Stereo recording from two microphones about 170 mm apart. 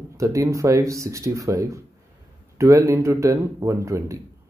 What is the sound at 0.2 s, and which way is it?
Speech, 20° right (ahead or behind).